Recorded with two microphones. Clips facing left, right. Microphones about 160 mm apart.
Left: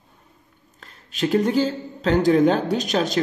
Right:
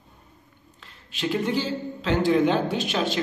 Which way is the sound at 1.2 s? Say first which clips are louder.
Left 6 dB; 40° left (ahead or behind).